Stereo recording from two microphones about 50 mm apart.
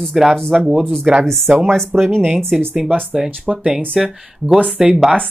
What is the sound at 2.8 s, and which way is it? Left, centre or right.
Speech, centre.